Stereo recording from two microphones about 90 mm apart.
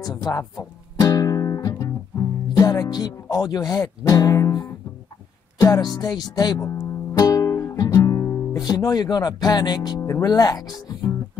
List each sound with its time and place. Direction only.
0.2 s music: 40° left (ahead or behind)
2.5 s speech: 45° left (ahead or behind)
7.2 s music: 40° left (ahead or behind)
8.6 s speech: 45° left (ahead or behind)